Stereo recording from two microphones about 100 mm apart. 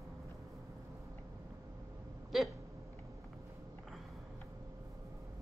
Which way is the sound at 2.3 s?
Centre (ahead or behind).